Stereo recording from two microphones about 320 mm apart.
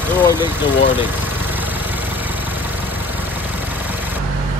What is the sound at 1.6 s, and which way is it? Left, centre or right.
Vehicle, centre.